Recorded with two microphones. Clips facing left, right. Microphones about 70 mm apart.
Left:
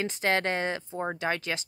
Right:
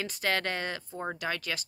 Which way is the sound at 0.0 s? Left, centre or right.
Left.